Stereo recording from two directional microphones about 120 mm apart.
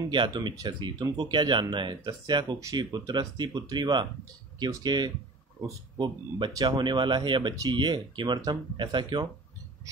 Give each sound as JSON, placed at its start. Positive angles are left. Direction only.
{"t": 0.1, "sound": "speech", "side_deg": -40}